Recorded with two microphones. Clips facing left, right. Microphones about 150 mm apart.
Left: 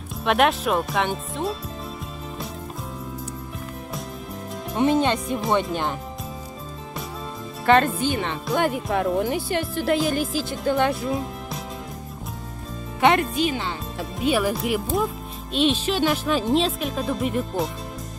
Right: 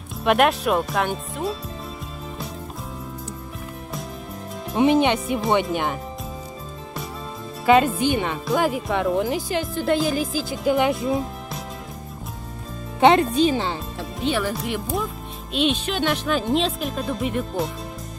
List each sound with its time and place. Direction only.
0.2 s speech: centre (ahead or behind)
5.0 s speech: 15° right (ahead or behind)
5.4 s speech: centre (ahead or behind)
7.6 s speech: 5° right (ahead or behind)
8.0 s speech: 15° right (ahead or behind)
8.5 s speech: centre (ahead or behind)
10.8 s speech: 20° right (ahead or behind)
11.1 s music: centre (ahead or behind)
13.0 s speech: 25° right (ahead or behind)
13.9 s speech: 10° left (ahead or behind)